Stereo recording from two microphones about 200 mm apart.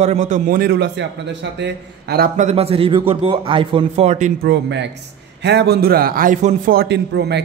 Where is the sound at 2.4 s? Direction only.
30° right (ahead or behind).